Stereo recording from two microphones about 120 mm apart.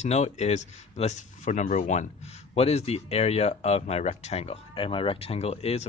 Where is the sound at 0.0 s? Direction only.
70° left (ahead or behind).